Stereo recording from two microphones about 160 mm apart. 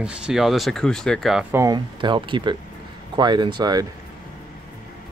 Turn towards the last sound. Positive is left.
turn(degrees=-25)  # may be behind; listen again after turning